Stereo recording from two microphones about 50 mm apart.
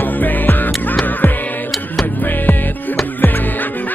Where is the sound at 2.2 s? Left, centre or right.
Left.